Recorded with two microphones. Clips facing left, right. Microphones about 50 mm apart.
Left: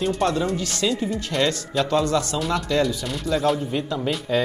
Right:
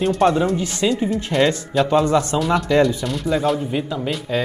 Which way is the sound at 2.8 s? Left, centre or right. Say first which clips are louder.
Right 5 dB; centre.